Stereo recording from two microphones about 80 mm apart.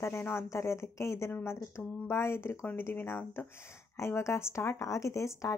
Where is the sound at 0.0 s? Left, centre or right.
Left.